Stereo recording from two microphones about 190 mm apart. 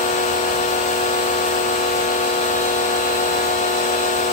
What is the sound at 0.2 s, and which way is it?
Vacuum cleaner, 40° left (ahead or behind).